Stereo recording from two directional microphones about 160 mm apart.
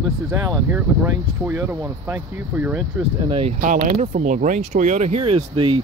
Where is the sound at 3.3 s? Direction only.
35° right (ahead or behind).